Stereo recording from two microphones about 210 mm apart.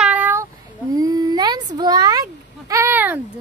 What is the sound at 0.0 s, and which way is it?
Meow, 5° right (ahead or behind).